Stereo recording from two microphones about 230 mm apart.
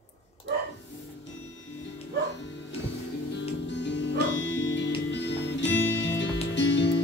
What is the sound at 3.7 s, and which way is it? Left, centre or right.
Music, left.